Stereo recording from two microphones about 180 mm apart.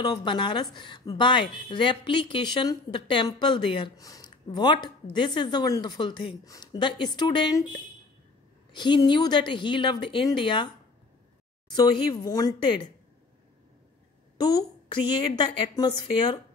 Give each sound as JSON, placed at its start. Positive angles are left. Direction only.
{"t": 0.0, "sound": "a woman's voice", "side_deg": 25}
{"t": 8.7, "sound": "a woman's voice", "side_deg": 25}
{"t": 11.7, "sound": "a woman's voice", "side_deg": 20}
{"t": 14.4, "sound": "a woman's voice", "side_deg": 25}